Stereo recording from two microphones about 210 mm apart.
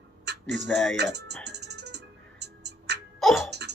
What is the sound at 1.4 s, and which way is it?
Music, 55° right (ahead or behind).